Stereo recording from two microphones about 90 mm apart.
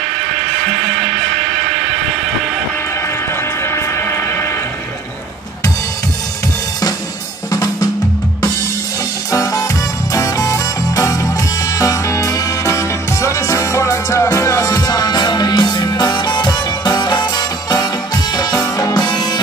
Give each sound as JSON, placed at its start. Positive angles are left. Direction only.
{"t": 7.5, "sound": "drum kit", "side_deg": 40}
{"t": 9.3, "sound": "music", "side_deg": 40}